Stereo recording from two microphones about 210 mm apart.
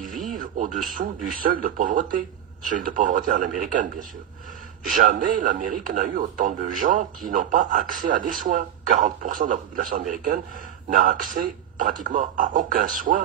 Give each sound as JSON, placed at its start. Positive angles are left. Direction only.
{"t": 0.2, "sound": "a sound", "side_deg": -40}
{"t": 1.0, "sound": "speech", "side_deg": -45}
{"t": 4.8, "sound": "speech", "side_deg": -40}